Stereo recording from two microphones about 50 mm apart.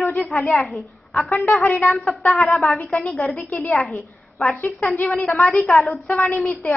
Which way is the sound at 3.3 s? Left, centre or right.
Left.